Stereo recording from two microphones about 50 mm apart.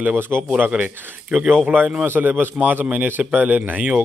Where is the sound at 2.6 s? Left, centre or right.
Right.